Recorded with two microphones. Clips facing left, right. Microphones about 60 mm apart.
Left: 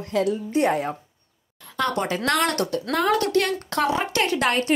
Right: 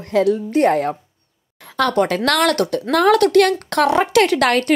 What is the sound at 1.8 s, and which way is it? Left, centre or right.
Speech, right.